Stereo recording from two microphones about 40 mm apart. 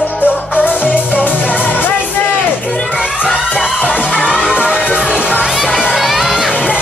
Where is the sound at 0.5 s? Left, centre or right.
Left.